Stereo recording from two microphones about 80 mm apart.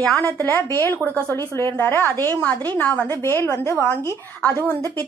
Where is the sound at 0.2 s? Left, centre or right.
Left.